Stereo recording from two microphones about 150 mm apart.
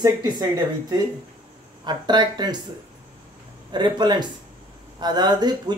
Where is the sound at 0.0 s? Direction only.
25° right (ahead or behind).